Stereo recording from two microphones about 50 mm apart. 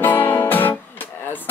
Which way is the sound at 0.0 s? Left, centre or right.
Left.